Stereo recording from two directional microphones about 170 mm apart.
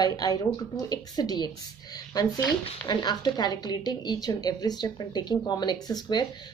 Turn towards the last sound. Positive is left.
turn(degrees=25)  # may be behind; listen again after turning